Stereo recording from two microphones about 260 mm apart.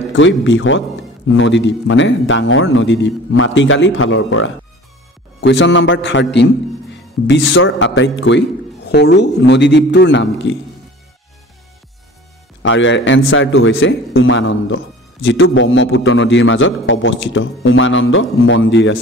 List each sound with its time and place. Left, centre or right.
0.1 s speech: left
12.6 s speech: left